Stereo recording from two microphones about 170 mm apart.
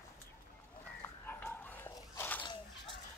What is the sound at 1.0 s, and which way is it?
Dog, 10° left (ahead or behind).